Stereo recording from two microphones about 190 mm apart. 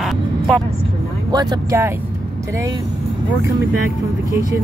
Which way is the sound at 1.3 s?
20° right (ahead or behind).